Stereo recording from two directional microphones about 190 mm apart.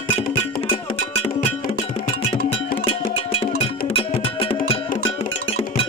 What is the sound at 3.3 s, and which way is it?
Music, 30° left (ahead or behind).